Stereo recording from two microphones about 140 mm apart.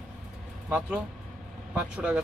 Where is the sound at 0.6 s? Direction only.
10° right (ahead or behind).